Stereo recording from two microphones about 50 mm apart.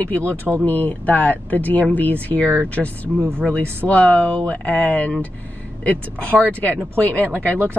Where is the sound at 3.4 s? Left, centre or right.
Left.